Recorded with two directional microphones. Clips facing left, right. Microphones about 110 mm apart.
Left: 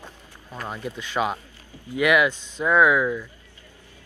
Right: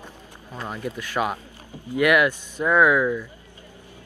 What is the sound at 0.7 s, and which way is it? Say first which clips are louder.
Speech: right 1 dB; 15° left (ahead or behind).